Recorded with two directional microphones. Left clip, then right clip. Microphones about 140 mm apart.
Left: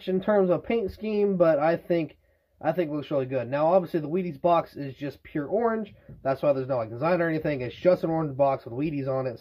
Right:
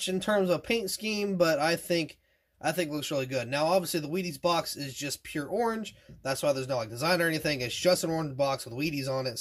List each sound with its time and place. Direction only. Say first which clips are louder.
0.0 s speech: left 4 dB; 30° right (ahead or behind)